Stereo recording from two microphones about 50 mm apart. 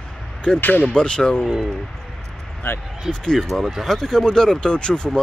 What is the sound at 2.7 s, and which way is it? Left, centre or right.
Speech, left.